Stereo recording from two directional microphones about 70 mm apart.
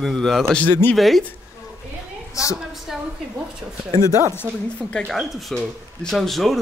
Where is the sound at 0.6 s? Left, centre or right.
Left.